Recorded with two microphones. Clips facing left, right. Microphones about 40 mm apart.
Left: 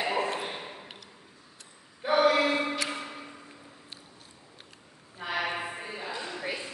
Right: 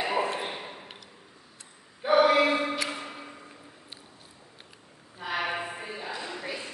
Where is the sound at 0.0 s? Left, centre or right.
Centre.